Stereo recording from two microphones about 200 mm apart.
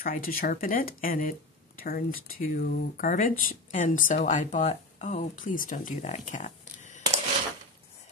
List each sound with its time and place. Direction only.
0.0 s speech: 45° left (ahead or behind)